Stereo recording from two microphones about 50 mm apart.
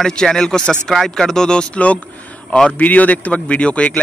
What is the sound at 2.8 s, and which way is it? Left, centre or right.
Speech, left.